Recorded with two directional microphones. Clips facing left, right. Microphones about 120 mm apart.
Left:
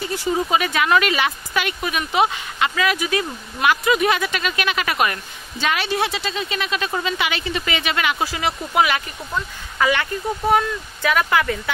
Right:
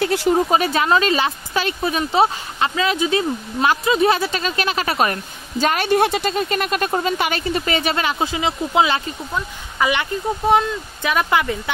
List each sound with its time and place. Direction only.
0.0 s speech: 70° right (ahead or behind)
0.4 s speech: 35° right (ahead or behind)
8.2 s speech: 20° right (ahead or behind)